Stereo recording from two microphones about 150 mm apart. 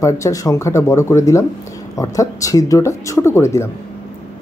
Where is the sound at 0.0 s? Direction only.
20° left (ahead or behind).